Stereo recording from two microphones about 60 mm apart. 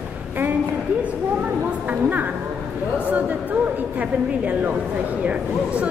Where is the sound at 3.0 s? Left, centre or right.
Right.